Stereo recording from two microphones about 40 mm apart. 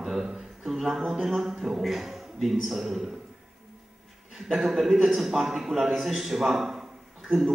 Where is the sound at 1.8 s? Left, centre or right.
Centre.